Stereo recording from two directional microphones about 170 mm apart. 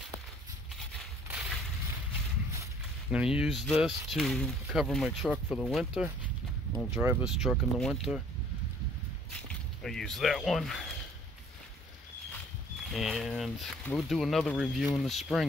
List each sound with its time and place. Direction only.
1.3 s a sound: 5° right (ahead or behind)
3.1 s speech: 5° right (ahead or behind)
6.9 s speech: 10° right (ahead or behind)
9.8 s speech: centre (ahead or behind)
12.9 s speech: centre (ahead or behind)